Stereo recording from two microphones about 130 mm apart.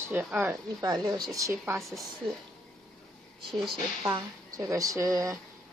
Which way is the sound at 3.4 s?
Centre (ahead or behind).